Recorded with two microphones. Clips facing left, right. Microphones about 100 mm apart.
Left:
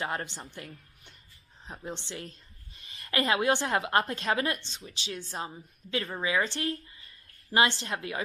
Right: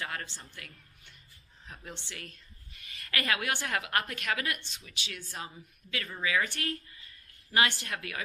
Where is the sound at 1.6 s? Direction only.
20° left (ahead or behind).